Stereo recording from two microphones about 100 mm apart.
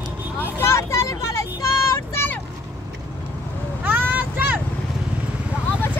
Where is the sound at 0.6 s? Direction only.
30° left (ahead or behind).